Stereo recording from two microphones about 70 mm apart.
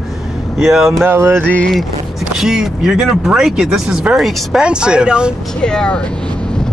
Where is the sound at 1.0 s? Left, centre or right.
Right.